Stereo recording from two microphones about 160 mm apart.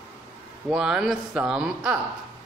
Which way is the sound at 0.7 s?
5° right (ahead or behind).